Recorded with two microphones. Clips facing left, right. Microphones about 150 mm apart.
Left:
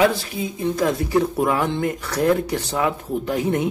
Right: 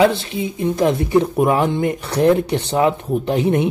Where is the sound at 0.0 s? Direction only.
25° right (ahead or behind).